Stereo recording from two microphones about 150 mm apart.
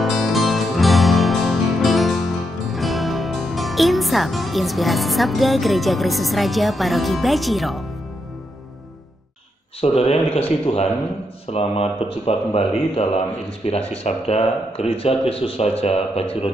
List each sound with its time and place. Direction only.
0.0 s music: centre (ahead or behind)
9.8 s speech: 40° left (ahead or behind)